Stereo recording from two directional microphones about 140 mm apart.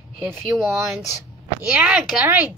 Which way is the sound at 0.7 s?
20° right (ahead or behind).